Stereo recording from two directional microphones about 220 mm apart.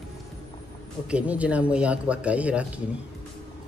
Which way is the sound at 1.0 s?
5° right (ahead or behind).